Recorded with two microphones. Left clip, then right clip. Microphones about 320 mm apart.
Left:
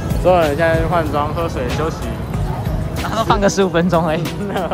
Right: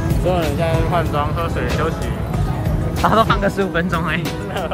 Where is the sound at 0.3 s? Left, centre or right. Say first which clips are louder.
Left 7 dB; left.